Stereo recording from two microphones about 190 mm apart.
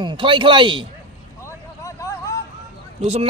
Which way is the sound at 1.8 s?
20° left (ahead or behind).